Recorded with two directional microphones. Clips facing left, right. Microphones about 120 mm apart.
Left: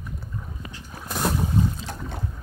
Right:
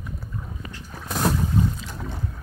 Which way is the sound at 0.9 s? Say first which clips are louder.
Right 2 dB; centre (ahead or behind).